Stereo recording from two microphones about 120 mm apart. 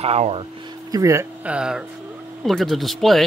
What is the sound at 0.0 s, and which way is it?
Speech, 60° right (ahead or behind).